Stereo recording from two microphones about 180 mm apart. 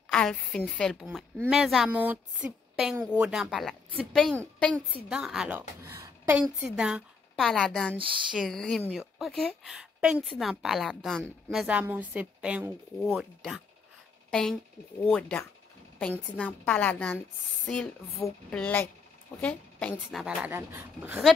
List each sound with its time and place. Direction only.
0.1 s a woman's voice: 5° left (ahead or behind); by 6.3 s 15° right (ahead or behind)
6.6 s a woman's voice: 5° right (ahead or behind)